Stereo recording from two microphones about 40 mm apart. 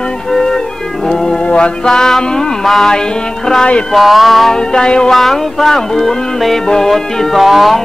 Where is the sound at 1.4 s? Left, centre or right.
Left; by 2.9 s centre.